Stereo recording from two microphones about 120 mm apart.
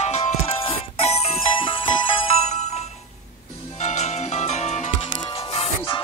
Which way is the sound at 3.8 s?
70° left (ahead or behind).